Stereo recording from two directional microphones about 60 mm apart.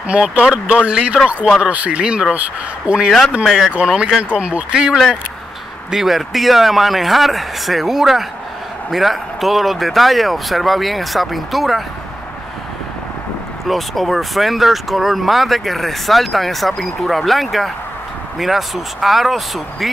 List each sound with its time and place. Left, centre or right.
0.1 s speech: centre
3.4 s speech: centre
13.7 s speech: centre